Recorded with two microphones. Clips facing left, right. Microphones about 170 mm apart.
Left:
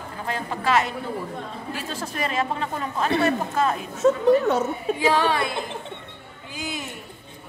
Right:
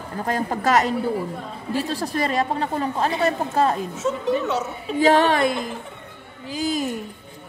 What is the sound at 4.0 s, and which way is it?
Speech, 55° left (ahead or behind).